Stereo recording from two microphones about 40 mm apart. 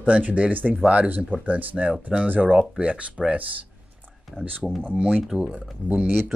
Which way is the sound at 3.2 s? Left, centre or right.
Centre.